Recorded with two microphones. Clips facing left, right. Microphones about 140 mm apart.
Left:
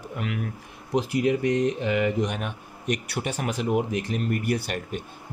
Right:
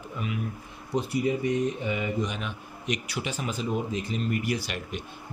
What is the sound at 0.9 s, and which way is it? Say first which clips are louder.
A man's voice: left 3 dB; 90° left.